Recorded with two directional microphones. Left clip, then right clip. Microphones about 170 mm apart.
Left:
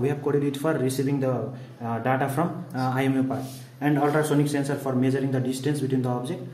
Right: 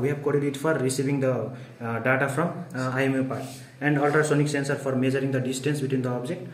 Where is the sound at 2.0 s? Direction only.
45° left (ahead or behind).